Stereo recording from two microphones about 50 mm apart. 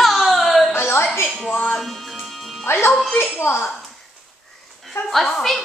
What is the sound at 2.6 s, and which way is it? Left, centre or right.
Speech, left.